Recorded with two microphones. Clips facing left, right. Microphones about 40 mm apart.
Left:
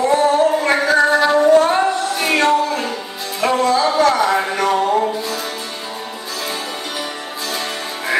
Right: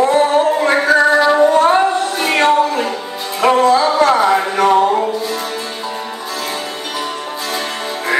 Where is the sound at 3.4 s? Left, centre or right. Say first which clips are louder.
Right 5 dB; right.